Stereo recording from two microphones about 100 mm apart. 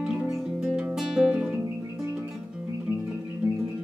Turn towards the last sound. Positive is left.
turn(degrees=-15)  # may be behind; listen again after turning